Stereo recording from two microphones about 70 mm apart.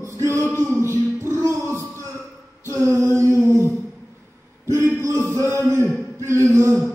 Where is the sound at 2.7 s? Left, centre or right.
Right.